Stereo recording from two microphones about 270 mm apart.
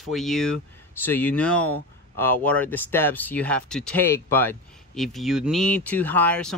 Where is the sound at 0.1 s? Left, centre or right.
Centre.